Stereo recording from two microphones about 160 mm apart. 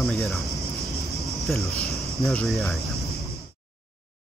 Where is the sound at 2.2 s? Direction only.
Centre (ahead or behind).